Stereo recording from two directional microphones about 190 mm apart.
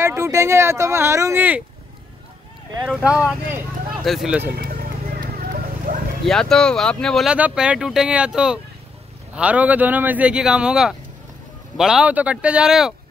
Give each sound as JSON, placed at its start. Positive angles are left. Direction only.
{"t": 0.0, "sound": "speech", "side_deg": -15}
{"t": 2.9, "sound": "speech", "side_deg": -5}
{"t": 4.6, "sound": "vehicle", "side_deg": -50}
{"t": 6.2, "sound": "speech", "side_deg": 0}